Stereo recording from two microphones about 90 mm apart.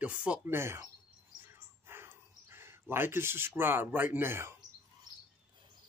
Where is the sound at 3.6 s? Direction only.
25° right (ahead or behind).